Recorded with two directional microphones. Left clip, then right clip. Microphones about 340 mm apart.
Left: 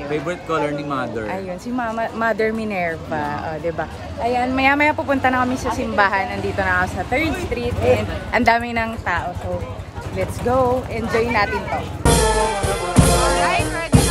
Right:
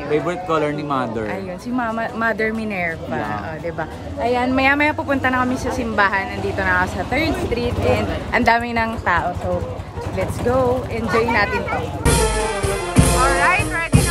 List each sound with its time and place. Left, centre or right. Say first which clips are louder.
0.1 s a woman's voice: right 4 dB; centre
4.2 s a woman's voice: right 1 dB; centre
12.1 s music: left 3 dB; left
13.4 s music: right 2 dB; centre